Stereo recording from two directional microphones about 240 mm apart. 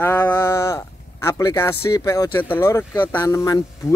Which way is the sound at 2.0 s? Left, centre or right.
Centre.